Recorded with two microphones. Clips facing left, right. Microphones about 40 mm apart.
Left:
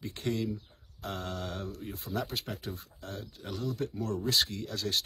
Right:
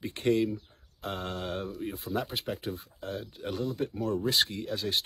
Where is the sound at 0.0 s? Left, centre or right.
Right.